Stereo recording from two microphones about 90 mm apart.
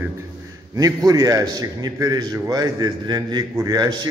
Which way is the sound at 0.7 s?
40° right (ahead or behind).